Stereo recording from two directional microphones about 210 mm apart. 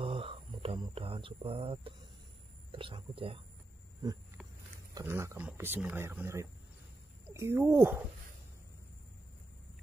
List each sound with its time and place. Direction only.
0.0 s a sound: 25° right (ahead or behind)
2.7 s speech: 25° right (ahead or behind)
4.9 s speech: 15° right (ahead or behind)